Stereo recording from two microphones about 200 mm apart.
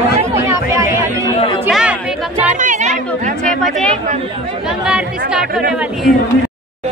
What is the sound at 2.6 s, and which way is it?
Chatter, 40° right (ahead or behind).